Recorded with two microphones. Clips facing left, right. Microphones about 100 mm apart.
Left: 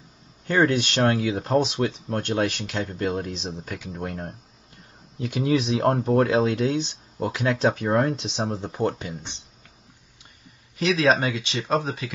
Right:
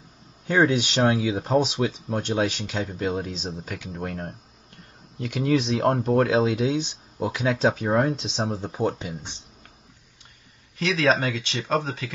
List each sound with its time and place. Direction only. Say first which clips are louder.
0.5 s speech: even; 5° right (ahead or behind)
10.8 s speech: left 2 dB; 15° left (ahead or behind)